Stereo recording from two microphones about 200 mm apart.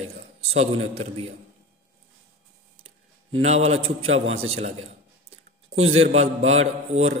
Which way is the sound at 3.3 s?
30° right (ahead or behind).